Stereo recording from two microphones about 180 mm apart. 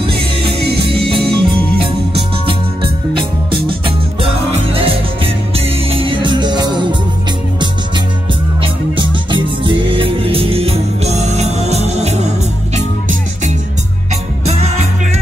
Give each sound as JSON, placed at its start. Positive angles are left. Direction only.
{"t": 0.6, "sound": "music", "side_deg": -65}
{"t": 0.8, "sound": "music", "side_deg": -30}
{"t": 8.9, "sound": "music", "side_deg": -25}
{"t": 14.4, "sound": "music", "side_deg": -35}